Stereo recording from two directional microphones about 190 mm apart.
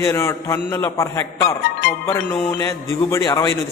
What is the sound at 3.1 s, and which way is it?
Speech, 20° left (ahead or behind).